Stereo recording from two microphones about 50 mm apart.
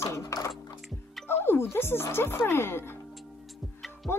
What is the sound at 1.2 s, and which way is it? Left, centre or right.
Speech, left.